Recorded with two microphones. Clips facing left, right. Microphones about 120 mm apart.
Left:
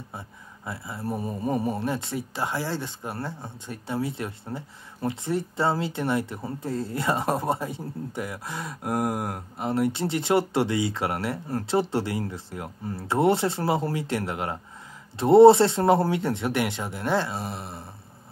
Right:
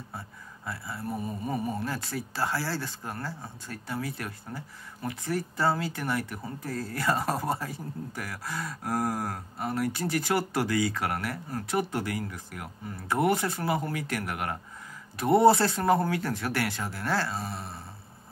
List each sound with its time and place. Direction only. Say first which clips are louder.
0.7 s speech: left 2 dB; 20° left (ahead or behind)
1.2 s mantra: left 6 dB; 35° left (ahead or behind)
1.9 s speech: left 5 dB; 20° left (ahead or behind)